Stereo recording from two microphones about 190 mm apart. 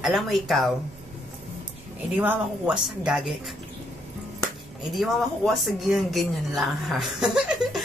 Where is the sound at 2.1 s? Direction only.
10° right (ahead or behind).